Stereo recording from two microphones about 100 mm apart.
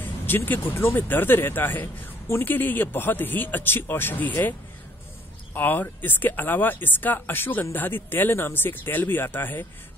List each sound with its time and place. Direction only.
0.0 s speech: 20° left (ahead or behind)